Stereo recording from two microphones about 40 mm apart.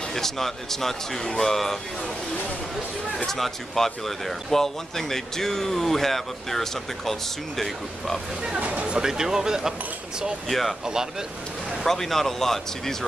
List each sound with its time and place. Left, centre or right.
0.1 s speech: centre
3.3 s speech: centre
8.5 s speech: right
9.0 s speech: centre
10.5 s speech: centre
10.9 s speech: centre
11.8 s speech: centre